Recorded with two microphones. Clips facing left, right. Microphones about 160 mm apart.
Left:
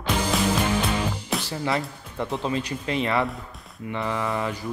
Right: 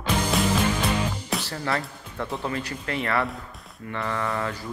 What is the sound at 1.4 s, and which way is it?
Speech, 15° left (ahead or behind).